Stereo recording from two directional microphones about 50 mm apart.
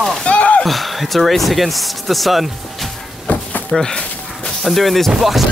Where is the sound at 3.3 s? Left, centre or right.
Left.